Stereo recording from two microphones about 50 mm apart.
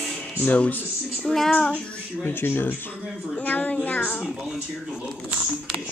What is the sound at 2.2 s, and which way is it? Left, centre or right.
Speech, left.